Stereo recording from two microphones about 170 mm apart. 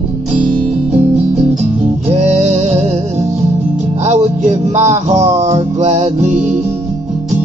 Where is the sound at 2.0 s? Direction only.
40° right (ahead or behind).